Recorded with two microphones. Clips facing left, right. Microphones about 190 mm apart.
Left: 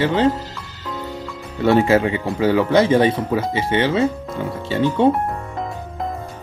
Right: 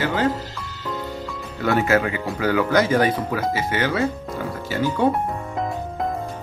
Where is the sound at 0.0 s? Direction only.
25° left (ahead or behind).